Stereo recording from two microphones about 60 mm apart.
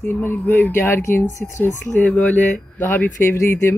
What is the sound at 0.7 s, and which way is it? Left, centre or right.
Speech, left.